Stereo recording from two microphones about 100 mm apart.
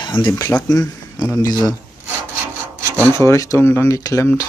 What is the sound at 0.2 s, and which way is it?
Speech, 65° left (ahead or behind).